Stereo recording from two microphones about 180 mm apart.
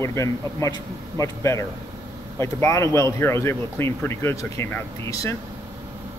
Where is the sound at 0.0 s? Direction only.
15° left (ahead or behind).